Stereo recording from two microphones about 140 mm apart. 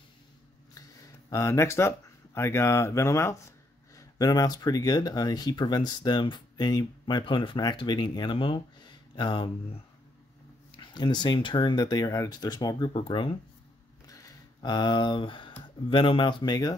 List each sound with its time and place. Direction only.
0.7 s speech: 25° left (ahead or behind)
10.8 s speech: 30° left (ahead or behind)
14.0 s a sound: 25° left (ahead or behind)
15.9 s speech: 35° left (ahead or behind)